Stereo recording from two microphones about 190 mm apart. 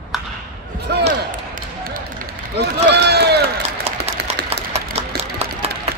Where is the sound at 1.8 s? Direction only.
50° right (ahead or behind).